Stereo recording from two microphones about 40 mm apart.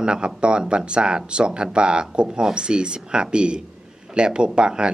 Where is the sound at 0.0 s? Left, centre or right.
Right.